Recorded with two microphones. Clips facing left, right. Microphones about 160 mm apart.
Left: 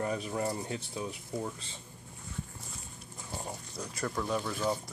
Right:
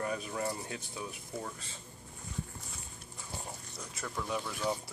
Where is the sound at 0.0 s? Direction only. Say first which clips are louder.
Left 3 dB; 25° left (ahead or behind).